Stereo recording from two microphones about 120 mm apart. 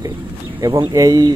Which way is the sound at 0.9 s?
30° right (ahead or behind).